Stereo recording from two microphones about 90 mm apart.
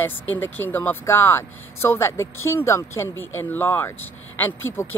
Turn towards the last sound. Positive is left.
turn(degrees=25)  # may be behind; listen again after turning